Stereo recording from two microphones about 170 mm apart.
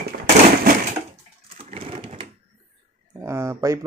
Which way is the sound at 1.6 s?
35° right (ahead or behind).